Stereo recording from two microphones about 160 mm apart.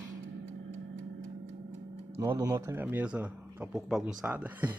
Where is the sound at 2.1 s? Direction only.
20° right (ahead or behind).